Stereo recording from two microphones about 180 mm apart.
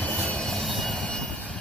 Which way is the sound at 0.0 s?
5° left (ahead or behind).